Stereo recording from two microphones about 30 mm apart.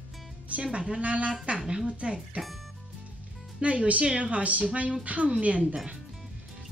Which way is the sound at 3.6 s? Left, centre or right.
Right.